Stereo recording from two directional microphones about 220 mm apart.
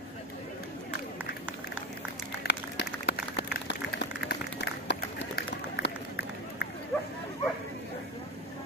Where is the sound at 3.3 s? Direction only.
50° left (ahead or behind).